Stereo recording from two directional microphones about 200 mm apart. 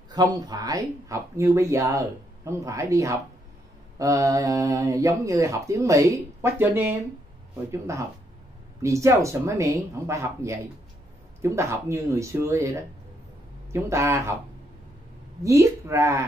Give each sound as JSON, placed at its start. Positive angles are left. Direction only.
{"t": 0.1, "sound": "speech", "side_deg": -20}
{"t": 15.4, "sound": "speech", "side_deg": -15}